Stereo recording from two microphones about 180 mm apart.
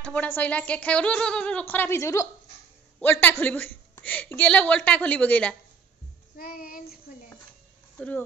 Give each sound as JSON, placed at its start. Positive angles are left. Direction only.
{"t": 0.0, "sound": "a woman's voice", "side_deg": 5}
{"t": 6.3, "sound": "child singing", "side_deg": 55}